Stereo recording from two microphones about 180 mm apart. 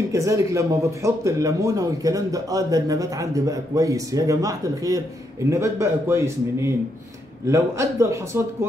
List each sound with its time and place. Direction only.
0.1 s a man's voice: 15° right (ahead or behind)